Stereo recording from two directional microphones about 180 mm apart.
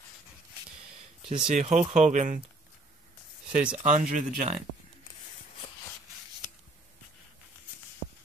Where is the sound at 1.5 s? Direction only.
40° right (ahead or behind).